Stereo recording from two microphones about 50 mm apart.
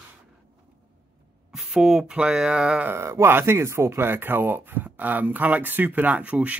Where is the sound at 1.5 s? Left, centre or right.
Centre.